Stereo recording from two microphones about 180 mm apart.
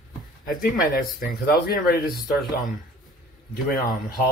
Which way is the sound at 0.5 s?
50° left (ahead or behind).